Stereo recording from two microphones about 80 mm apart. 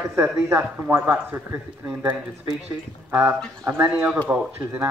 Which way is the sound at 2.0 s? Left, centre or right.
Right.